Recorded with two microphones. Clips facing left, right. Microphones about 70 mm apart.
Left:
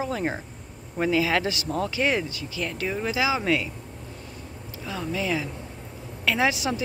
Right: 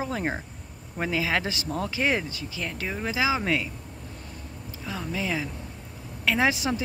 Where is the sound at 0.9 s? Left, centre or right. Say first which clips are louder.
Left 4 dB; right.